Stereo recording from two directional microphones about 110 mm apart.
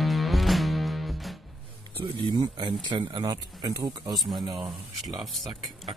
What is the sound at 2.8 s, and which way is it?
Speech, 45° right (ahead or behind).